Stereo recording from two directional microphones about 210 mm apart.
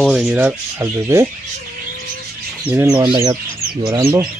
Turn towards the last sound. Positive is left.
turn(degrees=-15)  # may be behind; listen again after turning